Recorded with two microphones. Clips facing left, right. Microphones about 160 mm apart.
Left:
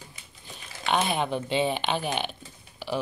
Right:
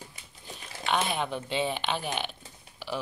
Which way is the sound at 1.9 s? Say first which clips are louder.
Left 3 dB; 5° left (ahead or behind).